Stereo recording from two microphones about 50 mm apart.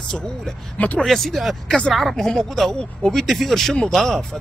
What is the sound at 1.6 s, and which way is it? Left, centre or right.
Speech, centre.